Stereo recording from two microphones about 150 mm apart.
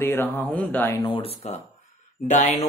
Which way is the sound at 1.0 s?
35° left (ahead or behind).